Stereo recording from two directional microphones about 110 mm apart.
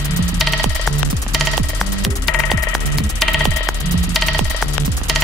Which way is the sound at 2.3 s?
Centre (ahead or behind).